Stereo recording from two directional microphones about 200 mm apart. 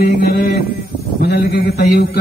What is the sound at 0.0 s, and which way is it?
A man's voice, 50° left (ahead or behind).